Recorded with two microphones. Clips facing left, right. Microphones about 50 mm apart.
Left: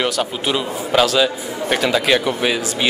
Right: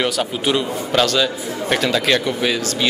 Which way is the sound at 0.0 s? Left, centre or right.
Centre.